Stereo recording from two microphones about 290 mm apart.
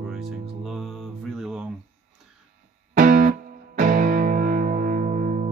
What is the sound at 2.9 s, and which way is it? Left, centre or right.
Music, right.